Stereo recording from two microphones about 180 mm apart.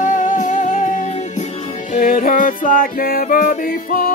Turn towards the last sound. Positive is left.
turn(degrees=50)  # may be behind; listen again after turning